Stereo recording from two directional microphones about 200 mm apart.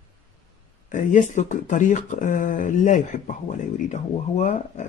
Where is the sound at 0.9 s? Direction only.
40° left (ahead or behind).